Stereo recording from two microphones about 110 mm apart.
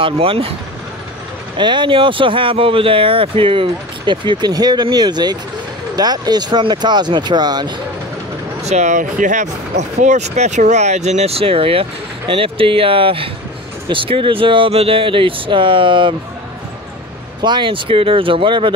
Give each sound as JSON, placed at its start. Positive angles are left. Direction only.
{"t": 0.0, "sound": "speech", "side_deg": -55}
{"t": 1.6, "sound": "speech", "side_deg": -45}
{"t": 8.6, "sound": "speech", "side_deg": -90}
{"t": 17.4, "sound": "speech", "side_deg": -45}